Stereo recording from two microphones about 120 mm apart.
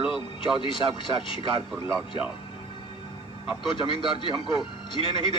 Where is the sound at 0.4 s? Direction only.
45° left (ahead or behind).